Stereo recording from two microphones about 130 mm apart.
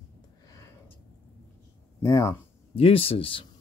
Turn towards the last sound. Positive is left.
turn(degrees=45)  # may be behind; listen again after turning